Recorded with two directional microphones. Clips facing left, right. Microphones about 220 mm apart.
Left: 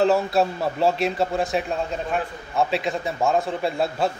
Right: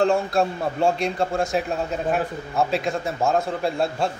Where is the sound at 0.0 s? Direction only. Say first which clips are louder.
Left 1 dB; 5° left (ahead or behind).